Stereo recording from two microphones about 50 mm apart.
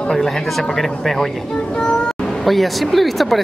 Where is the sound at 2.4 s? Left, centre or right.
Centre.